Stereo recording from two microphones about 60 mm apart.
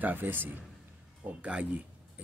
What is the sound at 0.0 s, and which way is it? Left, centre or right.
Speech, right.